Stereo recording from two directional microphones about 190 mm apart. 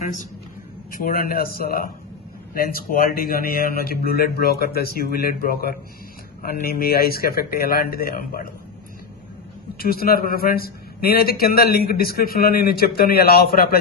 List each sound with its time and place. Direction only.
0.9 s a man's voice: 50° left (ahead or behind)
9.8 s a man's voice: 50° left (ahead or behind)